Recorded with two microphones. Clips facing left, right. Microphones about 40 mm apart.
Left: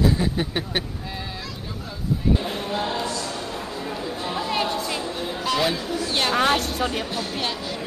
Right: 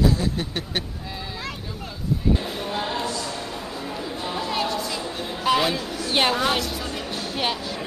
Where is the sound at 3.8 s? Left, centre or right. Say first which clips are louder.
Left 1 dB; centre.